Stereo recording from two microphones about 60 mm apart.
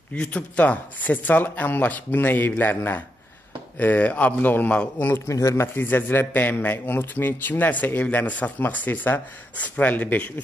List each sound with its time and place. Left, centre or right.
0.1 s a man's voice: centre
5.0 s a man's voice: left
5.3 s speech: left
5.8 s a man's voice: left